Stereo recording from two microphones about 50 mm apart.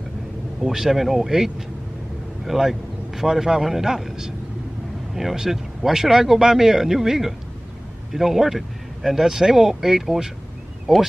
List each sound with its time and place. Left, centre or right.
0.6 s a man's voice: centre